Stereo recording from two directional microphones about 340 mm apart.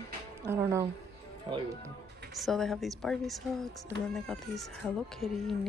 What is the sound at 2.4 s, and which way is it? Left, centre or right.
Speech, centre.